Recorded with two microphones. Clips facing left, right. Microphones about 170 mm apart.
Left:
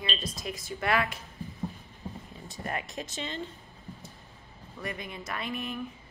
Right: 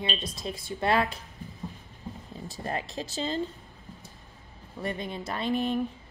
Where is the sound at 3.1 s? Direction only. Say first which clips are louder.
Right 9 dB; 35° right (ahead or behind).